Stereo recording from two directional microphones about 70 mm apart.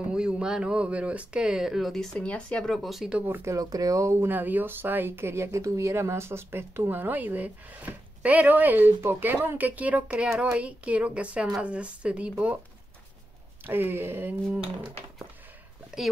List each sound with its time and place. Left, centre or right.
0.1 s speech: centre
2.1 s speech: centre
3.5 s speech: right
4.3 s speech: right
13.7 s speech: right